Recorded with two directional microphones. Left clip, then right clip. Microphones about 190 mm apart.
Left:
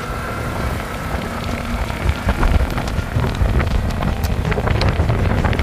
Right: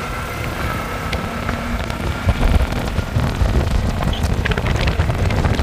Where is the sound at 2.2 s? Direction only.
Centre (ahead or behind).